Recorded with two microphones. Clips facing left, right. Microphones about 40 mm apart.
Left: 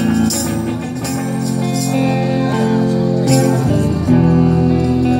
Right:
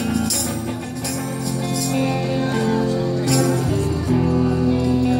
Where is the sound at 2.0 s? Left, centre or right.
Left.